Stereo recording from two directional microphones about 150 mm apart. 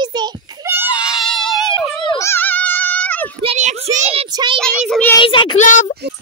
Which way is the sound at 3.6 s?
50° right (ahead or behind).